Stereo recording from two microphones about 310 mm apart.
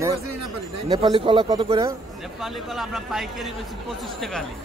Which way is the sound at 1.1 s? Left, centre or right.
Centre.